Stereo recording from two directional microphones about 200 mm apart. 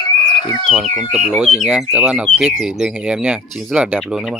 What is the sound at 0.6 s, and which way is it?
Speech, centre (ahead or behind).